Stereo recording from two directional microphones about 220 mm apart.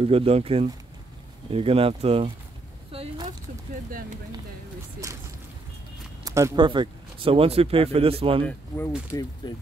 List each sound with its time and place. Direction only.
0.0 s speech: 25° right (ahead or behind)
2.9 s a sound: 25° right (ahead or behind)
5.0 s speech: 15° right (ahead or behind)
6.2 s speech: 15° right (ahead or behind)
8.5 s speech: 10° left (ahead or behind)